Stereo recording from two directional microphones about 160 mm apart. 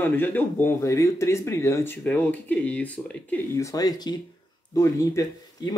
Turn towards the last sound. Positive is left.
turn(degrees=20)  # may be behind; listen again after turning